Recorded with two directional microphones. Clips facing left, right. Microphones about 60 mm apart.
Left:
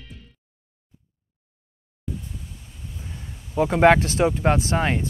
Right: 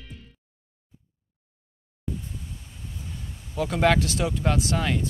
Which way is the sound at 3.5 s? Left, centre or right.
Left.